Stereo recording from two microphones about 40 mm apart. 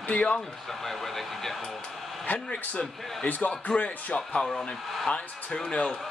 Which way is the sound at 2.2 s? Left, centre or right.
Left.